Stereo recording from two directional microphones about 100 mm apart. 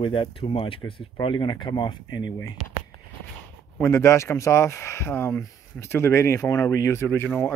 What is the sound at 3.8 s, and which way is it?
Speech, 25° left (ahead or behind).